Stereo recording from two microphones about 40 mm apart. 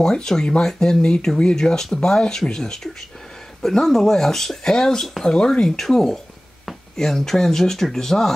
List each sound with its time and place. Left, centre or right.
0.0 s speech: centre